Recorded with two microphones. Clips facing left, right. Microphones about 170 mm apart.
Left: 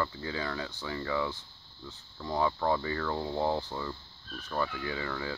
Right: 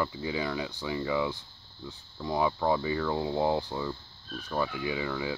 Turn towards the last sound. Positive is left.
turn(degrees=-10)  # may be behind; listen again after turning